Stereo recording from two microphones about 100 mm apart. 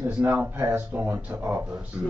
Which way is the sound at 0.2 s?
20° right (ahead or behind).